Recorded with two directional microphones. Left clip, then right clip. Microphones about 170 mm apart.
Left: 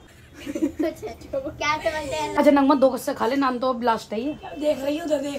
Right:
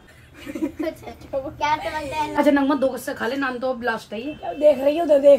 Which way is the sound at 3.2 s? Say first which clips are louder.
Left 2 dB; 50° left (ahead or behind).